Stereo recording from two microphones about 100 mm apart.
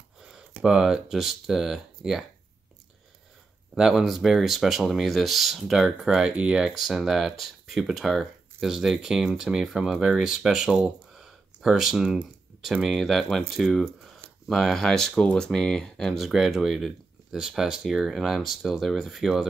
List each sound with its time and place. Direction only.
0.6 s speech: 5° right (ahead or behind)
3.7 s speech: 5° right (ahead or behind)